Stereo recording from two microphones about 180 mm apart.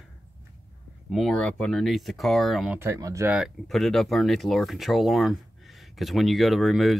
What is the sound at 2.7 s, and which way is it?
Speech, 15° right (ahead or behind).